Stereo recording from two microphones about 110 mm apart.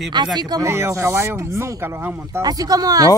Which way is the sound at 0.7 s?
25° right (ahead or behind).